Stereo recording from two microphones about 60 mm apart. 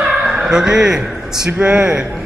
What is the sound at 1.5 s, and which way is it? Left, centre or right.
Speech, right.